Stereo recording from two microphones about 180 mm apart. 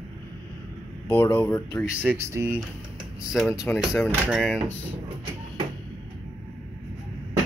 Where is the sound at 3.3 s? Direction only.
10° left (ahead or behind).